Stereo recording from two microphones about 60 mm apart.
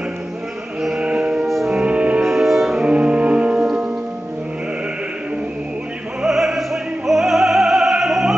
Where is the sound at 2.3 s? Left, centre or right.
Centre.